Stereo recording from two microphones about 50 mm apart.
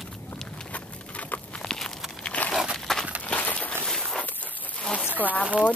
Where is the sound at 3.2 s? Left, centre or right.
Left.